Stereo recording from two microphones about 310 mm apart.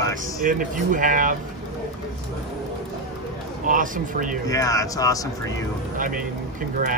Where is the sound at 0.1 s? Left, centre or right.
Right.